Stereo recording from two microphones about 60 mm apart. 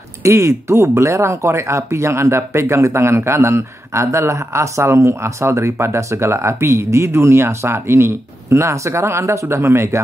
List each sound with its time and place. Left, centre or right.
0.2 s speech: right